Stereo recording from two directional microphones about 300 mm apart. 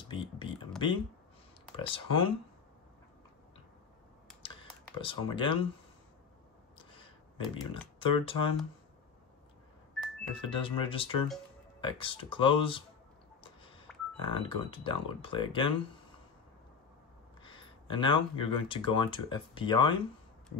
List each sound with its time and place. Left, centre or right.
0.1 s speech: centre
4.4 s typing: centre
4.9 s speech: centre
7.3 s speech: centre
10.6 s speech: centre
13.9 s telephone dialing: centre
14.2 s speech: centre
17.4 s speech: centre